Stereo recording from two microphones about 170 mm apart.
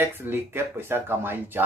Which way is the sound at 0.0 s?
10° right (ahead or behind).